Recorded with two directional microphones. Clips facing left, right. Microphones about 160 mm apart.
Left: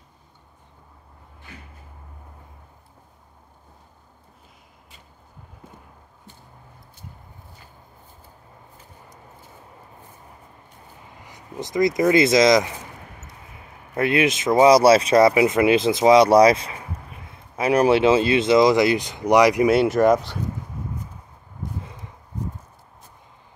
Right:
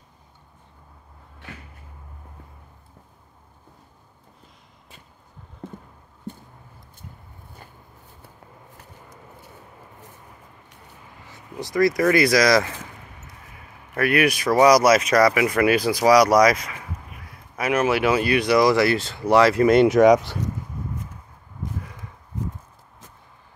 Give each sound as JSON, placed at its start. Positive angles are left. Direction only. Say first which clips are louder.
{"t": 11.2, "sound": "speech", "louder": "left 1 dB", "side_deg": 20}
{"t": 13.9, "sound": "speech", "louder": "even", "side_deg": 20}
{"t": 19.7, "sound": "speech", "louder": "right 3 dB", "side_deg": 0}
{"t": 21.8, "sound": "a sound", "louder": "left 1 dB", "side_deg": 20}